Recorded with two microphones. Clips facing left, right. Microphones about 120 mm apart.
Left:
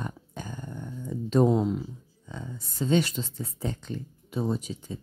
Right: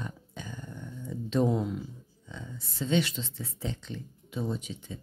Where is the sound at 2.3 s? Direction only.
45° left (ahead or behind).